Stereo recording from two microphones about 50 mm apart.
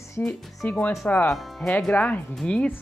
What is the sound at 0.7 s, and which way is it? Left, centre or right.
Speech, left.